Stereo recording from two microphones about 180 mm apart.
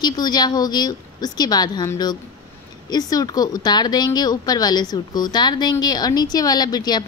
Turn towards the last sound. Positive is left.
turn(degrees=20)  # may be behind; listen again after turning